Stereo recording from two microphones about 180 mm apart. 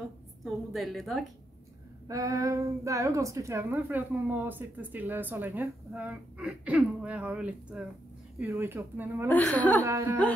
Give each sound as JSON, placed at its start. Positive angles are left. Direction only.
{"t": 0.4, "sound": "a woman's voice", "side_deg": 0}
{"t": 2.0, "sound": "a woman's voice", "side_deg": -20}
{"t": 9.3, "sound": "a woman's voice", "side_deg": 10}
{"t": 9.8, "sound": "a woman's voice", "side_deg": -15}